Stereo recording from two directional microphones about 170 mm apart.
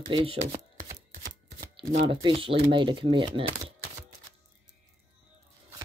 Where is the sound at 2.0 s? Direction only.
30° right (ahead or behind).